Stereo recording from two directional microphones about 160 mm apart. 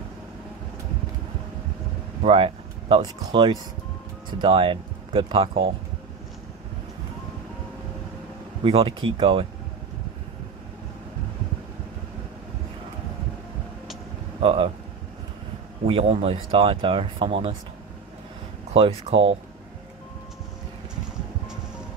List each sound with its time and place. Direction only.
2.2 s speech: 35° right (ahead or behind)
8.6 s speech: 35° right (ahead or behind)
14.4 s speech: 35° right (ahead or behind)
15.9 s speech: 40° right (ahead or behind)
18.7 s speech: 35° right (ahead or behind)